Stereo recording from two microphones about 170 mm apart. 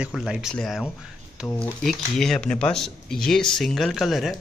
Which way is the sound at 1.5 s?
10° left (ahead or behind).